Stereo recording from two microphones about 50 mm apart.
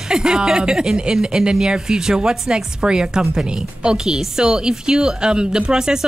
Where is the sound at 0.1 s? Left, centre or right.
Centre.